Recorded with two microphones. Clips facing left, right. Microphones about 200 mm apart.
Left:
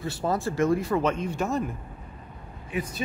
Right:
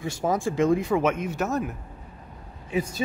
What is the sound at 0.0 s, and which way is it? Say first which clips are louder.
Speech: right 2 dB; 15° right (ahead or behind).